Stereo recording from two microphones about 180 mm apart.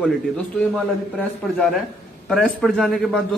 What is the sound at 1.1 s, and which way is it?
A man's voice, centre (ahead or behind).